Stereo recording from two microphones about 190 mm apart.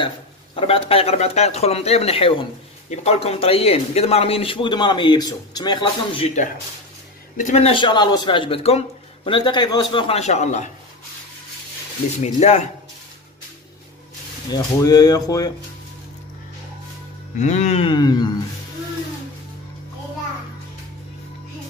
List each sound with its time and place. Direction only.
0.6 s a man's voice: 30° left (ahead or behind)
12.2 s speech: 40° left (ahead or behind)
14.5 s a man's voice: 20° left (ahead or behind)
17.4 s a man's voice: 35° left (ahead or behind); by 18.3 s 20° left (ahead or behind)